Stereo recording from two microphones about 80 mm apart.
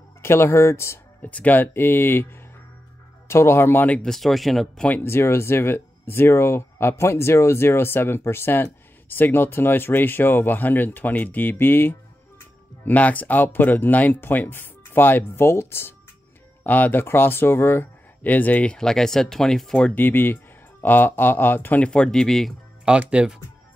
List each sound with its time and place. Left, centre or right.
0.2 s speech: left
1.2 s speech: centre
4.0 s speech: centre
4.8 s speech: left; by 19.9 s centre
20.0 s speech: left
21.8 s speech: centre
22.8 s speech: centre